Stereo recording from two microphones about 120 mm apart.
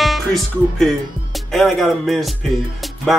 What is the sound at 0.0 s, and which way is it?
Speech, centre (ahead or behind).